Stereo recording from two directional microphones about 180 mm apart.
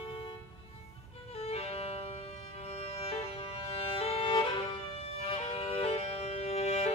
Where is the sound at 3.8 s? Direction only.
30° left (ahead or behind).